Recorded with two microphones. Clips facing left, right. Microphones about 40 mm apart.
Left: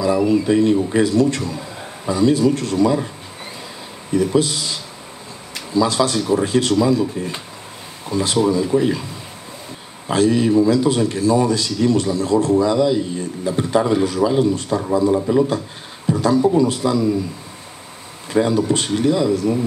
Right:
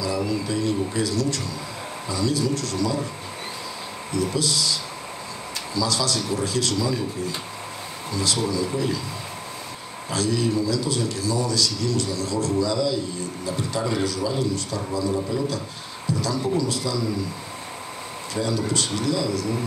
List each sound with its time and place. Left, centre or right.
0.0 s a man's voice: left
4.1 s a man's voice: left
10.0 s a man's voice: left
18.3 s a man's voice: left